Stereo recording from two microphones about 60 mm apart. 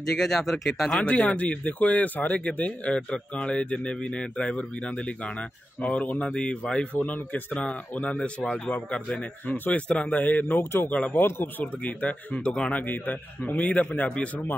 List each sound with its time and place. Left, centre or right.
0.2 s speech: centre
1.0 s speech: left
7.0 s speech: left
10.6 s speech: left
10.9 s speech: left
11.1 s speech: left
11.6 s speech: left
12.8 s speech: left